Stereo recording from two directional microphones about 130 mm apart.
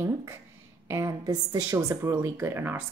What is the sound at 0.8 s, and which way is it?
A woman's voice, 25° right (ahead or behind).